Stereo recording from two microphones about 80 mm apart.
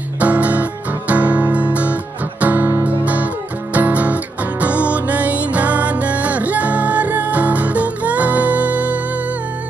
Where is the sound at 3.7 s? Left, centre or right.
Centre.